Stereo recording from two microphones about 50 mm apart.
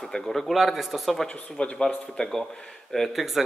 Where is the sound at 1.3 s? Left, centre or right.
Left.